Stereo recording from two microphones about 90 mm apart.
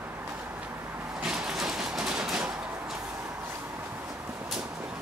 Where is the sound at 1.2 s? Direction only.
5° right (ahead or behind).